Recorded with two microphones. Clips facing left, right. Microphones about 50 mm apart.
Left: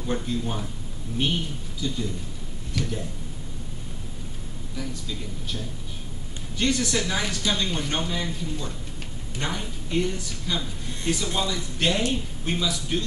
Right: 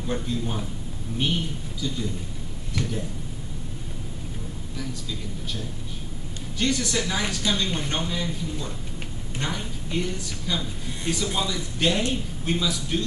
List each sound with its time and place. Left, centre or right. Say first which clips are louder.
0.0 s speech: even; centre
2.8 s speech: even; right
6.6 s speech: left 1 dB; centre